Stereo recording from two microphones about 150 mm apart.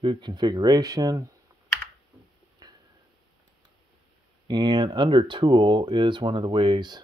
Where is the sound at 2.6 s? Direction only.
25° right (ahead or behind).